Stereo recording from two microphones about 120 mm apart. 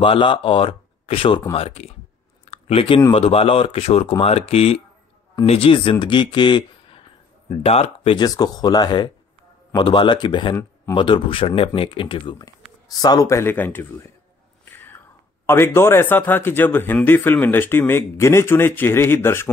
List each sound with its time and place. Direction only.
0.0 s speech: 45° left (ahead or behind)
2.5 s a sound: 50° left (ahead or behind)
3.1 s speech: 55° left (ahead or behind)
7.4 s speech: 55° left (ahead or behind)
8.2 s speech: 35° left (ahead or behind)
12.4 s speech: 30° left (ahead or behind)
14.7 s whispering: 15° left (ahead or behind)
15.4 s speech: 20° left (ahead or behind)